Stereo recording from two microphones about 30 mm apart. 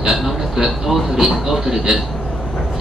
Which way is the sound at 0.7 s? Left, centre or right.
Centre.